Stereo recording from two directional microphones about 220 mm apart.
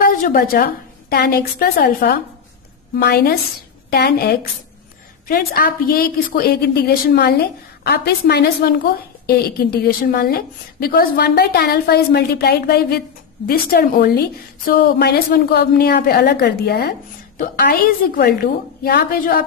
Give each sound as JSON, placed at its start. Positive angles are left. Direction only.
{"t": 0.0, "sound": "a woman's voice", "side_deg": 40}